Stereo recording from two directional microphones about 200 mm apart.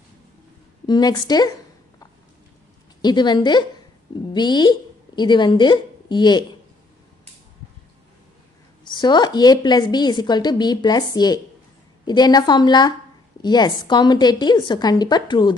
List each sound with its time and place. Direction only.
0.8 s a woman's voice: 20° left (ahead or behind)
3.0 s a woman's voice: 20° left (ahead or behind)
8.8 s a woman's voice: 20° left (ahead or behind)